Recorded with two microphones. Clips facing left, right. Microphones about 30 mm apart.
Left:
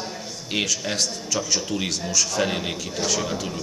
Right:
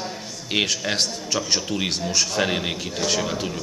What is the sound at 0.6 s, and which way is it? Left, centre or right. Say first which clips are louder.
Speech: right 2 dB; right.